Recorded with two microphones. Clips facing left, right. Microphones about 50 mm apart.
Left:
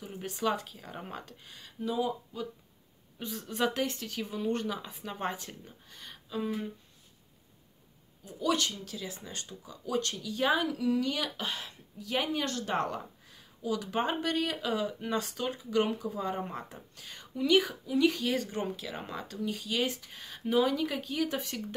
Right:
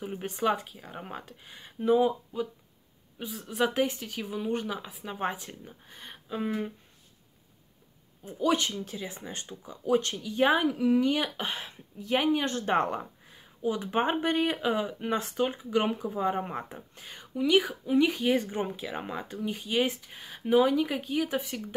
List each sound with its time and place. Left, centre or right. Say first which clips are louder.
0.0 s a woman's voice: right 4 dB; centre
1.6 s speech: right 8 dB; right
3.2 s a woman's voice: right 3 dB; centre
5.9 s speech: right 7 dB; right
8.2 s speech: right 3 dB; right
17.8 s speech: right 3 dB; right
19.9 s a woman's voice: right 1 dB; centre